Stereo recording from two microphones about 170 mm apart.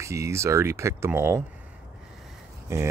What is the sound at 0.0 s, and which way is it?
Speech, 15° right (ahead or behind).